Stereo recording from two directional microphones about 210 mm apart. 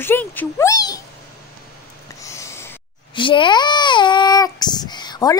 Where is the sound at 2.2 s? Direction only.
15° left (ahead or behind).